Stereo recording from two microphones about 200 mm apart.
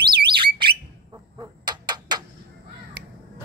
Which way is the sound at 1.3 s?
20° right (ahead or behind).